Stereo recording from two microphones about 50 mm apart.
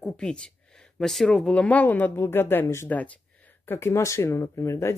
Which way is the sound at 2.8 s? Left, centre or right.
Left.